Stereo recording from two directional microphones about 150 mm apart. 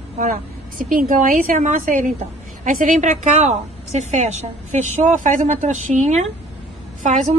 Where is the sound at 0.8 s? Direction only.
65° right (ahead or behind).